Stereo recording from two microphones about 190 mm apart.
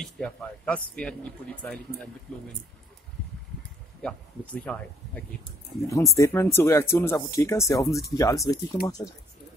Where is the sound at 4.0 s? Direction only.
5° left (ahead or behind).